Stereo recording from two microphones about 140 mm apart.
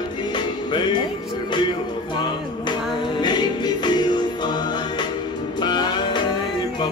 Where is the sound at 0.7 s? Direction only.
35° left (ahead or behind).